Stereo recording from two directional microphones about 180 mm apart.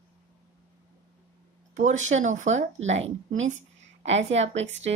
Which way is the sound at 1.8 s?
40° right (ahead or behind).